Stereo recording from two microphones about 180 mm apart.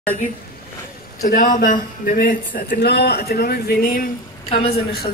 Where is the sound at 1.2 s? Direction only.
45° left (ahead or behind).